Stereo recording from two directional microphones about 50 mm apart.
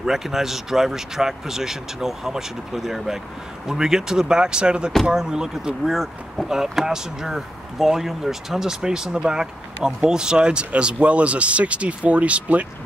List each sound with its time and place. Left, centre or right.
0.0 s speech: centre; by 12.6 s right